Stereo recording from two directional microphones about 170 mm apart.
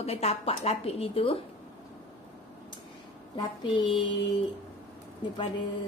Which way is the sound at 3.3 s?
30° left (ahead or behind).